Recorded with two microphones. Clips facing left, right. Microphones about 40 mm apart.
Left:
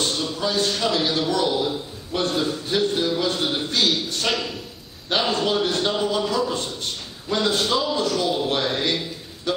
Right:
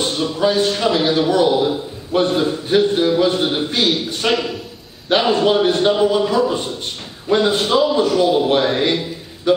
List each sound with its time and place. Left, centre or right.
0.0 s a man's voice: right